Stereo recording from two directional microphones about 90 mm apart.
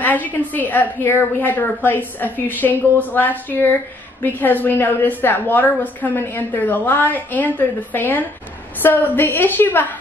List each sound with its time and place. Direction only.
0.0 s a woman's voice: 20° left (ahead or behind)